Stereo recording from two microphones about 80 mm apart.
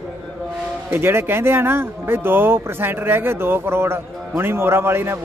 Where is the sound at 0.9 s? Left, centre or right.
Right.